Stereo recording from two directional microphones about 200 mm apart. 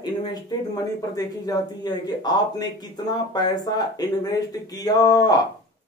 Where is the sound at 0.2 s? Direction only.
20° left (ahead or behind).